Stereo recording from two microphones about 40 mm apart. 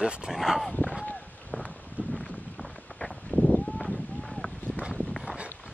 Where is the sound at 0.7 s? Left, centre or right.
Left.